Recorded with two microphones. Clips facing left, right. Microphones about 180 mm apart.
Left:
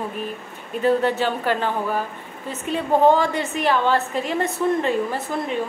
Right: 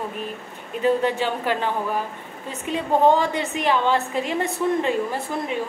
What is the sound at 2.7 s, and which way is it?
A woman's voice, 15° right (ahead or behind).